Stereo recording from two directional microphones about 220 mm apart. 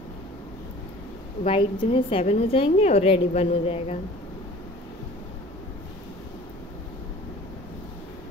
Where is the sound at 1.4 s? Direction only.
25° left (ahead or behind).